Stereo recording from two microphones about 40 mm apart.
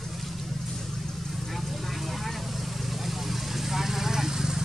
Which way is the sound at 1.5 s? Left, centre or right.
Centre.